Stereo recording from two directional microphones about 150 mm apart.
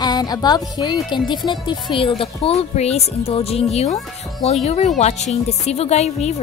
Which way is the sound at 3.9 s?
Centre (ahead or behind).